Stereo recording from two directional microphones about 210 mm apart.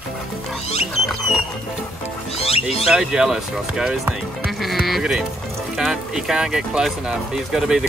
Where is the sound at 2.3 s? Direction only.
30° left (ahead or behind).